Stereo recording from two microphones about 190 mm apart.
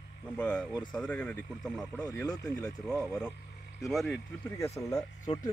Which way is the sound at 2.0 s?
20° left (ahead or behind).